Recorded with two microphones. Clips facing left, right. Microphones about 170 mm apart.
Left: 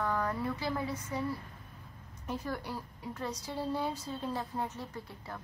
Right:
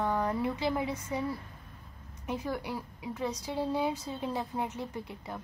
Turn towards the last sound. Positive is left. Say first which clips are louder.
# right 2 dB
turn(degrees=-15)  # may be behind; listen again after turning